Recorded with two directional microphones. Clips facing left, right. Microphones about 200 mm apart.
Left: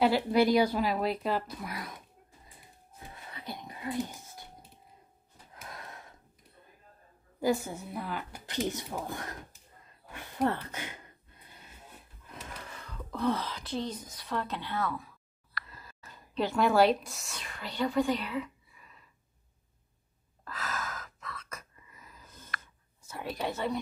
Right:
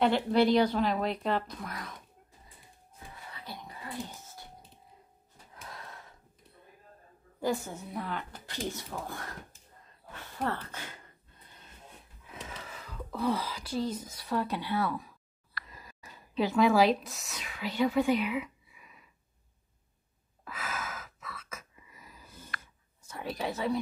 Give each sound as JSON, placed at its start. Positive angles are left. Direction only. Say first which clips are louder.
{"t": 0.0, "sound": "speech", "louder": "even", "side_deg": 10}
{"t": 3.4, "sound": "a sound", "louder": "left 6 dB", "side_deg": 20}
{"t": 7.4, "sound": "a woman's voice", "louder": "left 3 dB", "side_deg": 10}
{"t": 8.5, "sound": "speech", "louder": "left 5 dB", "side_deg": 20}
{"t": 11.6, "sound": "wheeze", "louder": "even", "side_deg": 5}
{"t": 15.6, "sound": "speech", "louder": "right 1 dB", "side_deg": -15}
{"t": 20.4, "sound": "gasp", "louder": "left 1 dB", "side_deg": -10}
{"t": 23.0, "sound": "a woman's voice", "louder": "even", "side_deg": 0}